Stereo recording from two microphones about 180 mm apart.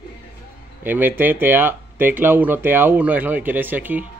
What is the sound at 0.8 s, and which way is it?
Speech, 10° right (ahead or behind).